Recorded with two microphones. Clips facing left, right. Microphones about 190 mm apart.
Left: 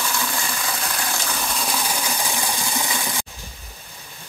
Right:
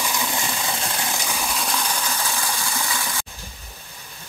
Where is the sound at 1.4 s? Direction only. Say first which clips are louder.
Even; centre (ahead or behind); by 3.3 s 20° left (ahead or behind).